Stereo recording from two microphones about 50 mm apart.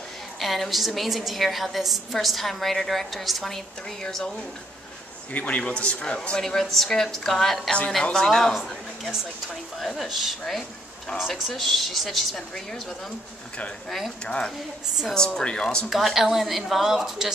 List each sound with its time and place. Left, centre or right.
0.4 s a woman's voice: centre
5.3 s speech: left
5.6 s speech: centre
9.5 s a woman's voice: centre
13.8 s a woman's voice: centre
14.2 s speech: centre
15.9 s a woman's voice: centre